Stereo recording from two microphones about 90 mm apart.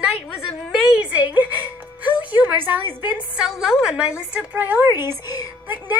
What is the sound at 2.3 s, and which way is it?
Speech, 20° right (ahead or behind).